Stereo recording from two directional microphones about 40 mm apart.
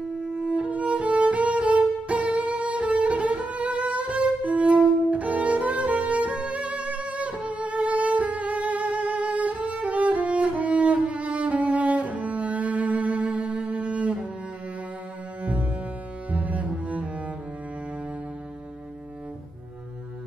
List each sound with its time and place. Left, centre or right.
0.3 s violin: right
15.4 s music: right
16.3 s cello: right